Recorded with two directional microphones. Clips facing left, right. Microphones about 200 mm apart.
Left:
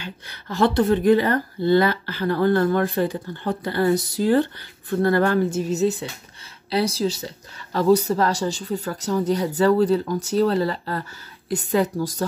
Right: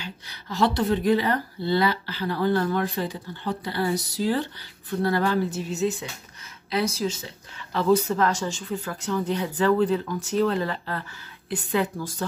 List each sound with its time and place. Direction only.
0.0 s a woman's voice: 55° left (ahead or behind)